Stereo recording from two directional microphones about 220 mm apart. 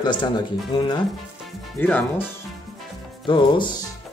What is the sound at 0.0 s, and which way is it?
Speech, 20° left (ahead or behind).